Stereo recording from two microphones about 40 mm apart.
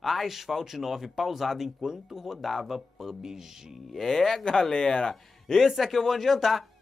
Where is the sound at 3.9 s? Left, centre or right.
Centre.